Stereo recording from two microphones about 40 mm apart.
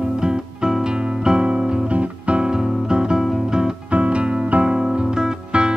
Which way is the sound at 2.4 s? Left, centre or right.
Centre.